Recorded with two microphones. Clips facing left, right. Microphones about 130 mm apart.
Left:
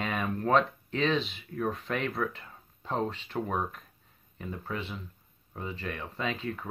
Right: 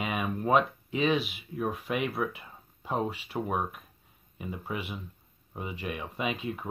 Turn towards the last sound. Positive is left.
turn(degrees=-15)  # may be behind; listen again after turning